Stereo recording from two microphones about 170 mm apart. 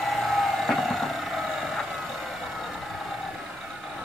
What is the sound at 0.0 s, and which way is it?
Vehicle, centre (ahead or behind).